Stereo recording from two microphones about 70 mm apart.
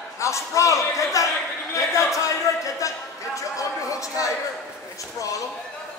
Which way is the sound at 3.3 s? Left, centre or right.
Left.